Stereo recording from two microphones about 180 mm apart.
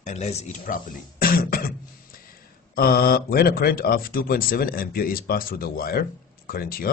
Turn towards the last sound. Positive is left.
turn(degrees=55)  # may be behind; listen again after turning